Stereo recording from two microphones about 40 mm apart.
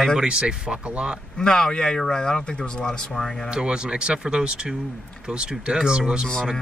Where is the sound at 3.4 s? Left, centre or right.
Right.